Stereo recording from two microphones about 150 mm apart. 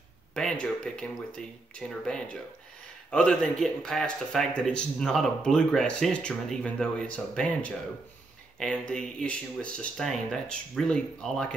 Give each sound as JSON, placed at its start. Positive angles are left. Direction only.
{"t": 0.3, "sound": "speech", "side_deg": 5}